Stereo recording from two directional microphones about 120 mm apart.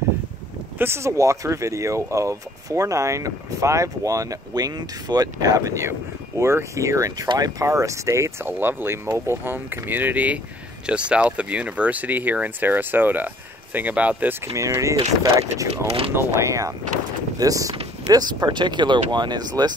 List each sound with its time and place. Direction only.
0.7 s speech: 20° right (ahead or behind)